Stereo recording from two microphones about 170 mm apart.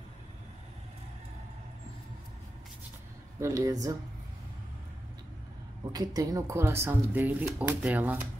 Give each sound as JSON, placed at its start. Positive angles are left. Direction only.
{"t": 3.3, "sound": "speech", "side_deg": -20}
{"t": 5.9, "sound": "speech", "side_deg": -20}